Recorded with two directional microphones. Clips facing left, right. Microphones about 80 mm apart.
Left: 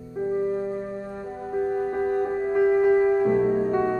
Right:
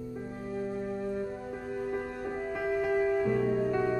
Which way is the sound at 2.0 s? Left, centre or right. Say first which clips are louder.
Left 11 dB; left.